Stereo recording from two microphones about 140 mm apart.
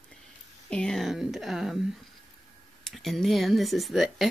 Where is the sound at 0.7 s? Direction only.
5° left (ahead or behind).